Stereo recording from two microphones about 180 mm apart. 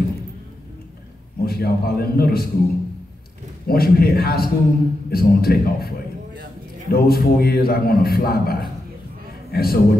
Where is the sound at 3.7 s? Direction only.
60° left (ahead or behind).